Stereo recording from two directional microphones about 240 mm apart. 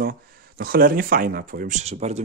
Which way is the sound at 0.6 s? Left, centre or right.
Right.